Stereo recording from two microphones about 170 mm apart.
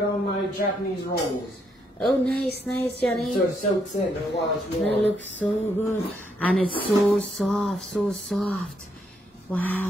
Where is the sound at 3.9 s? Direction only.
40° left (ahead or behind).